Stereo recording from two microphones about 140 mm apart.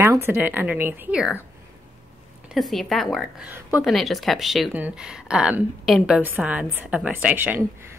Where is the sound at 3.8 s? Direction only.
Centre (ahead or behind).